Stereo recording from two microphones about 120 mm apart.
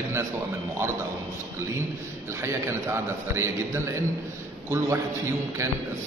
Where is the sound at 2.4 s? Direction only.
20° right (ahead or behind).